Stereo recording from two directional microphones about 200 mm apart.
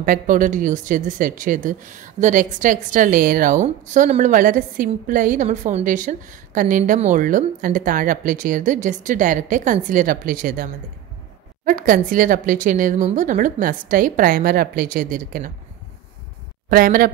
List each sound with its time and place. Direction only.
0.0 s a woman's voice: 40° right (ahead or behind)
16.6 s a woman's voice: 45° right (ahead or behind)